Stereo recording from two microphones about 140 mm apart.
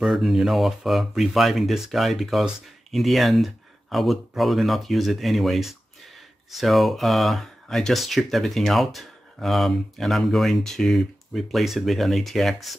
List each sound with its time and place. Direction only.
0.0 s speech: centre (ahead or behind)